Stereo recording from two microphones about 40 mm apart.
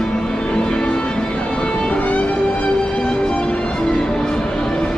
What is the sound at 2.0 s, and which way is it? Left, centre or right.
Music, left.